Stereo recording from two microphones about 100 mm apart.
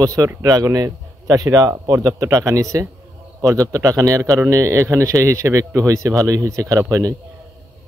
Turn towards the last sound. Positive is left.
turn(degrees=-35)  # may be behind; listen again after turning